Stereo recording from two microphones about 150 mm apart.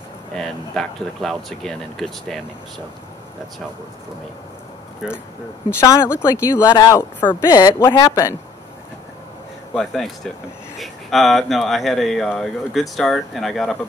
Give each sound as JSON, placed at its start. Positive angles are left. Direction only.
{"t": 0.4, "sound": "speech", "side_deg": 0}
{"t": 5.0, "sound": "speech", "side_deg": -5}
{"t": 5.7, "sound": "speech", "side_deg": 20}
{"t": 9.8, "sound": "speech", "side_deg": 0}